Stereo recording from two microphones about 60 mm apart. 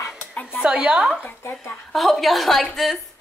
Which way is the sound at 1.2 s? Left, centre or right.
Left.